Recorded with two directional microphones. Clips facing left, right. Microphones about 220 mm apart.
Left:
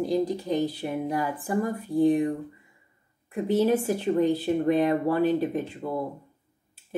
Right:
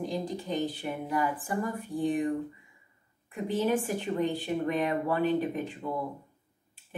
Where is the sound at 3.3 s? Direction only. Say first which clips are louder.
Left 5 dB; 40° left (ahead or behind).